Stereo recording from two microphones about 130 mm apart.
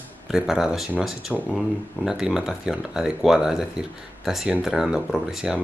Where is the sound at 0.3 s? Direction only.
5° right (ahead or behind).